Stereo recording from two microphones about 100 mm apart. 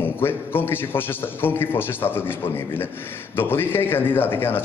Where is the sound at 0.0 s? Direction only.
20° left (ahead or behind).